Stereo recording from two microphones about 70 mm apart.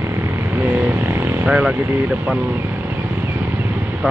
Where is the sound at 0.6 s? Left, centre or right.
Right.